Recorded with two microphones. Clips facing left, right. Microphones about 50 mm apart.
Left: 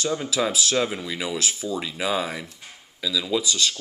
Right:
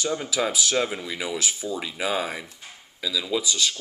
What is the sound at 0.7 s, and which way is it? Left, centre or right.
Speech, centre.